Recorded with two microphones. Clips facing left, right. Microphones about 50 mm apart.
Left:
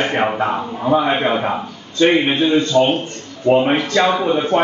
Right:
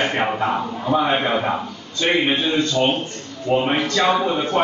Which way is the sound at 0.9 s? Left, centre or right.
Left.